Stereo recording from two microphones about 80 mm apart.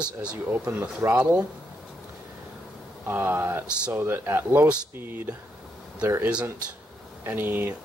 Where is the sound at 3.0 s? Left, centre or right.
Right.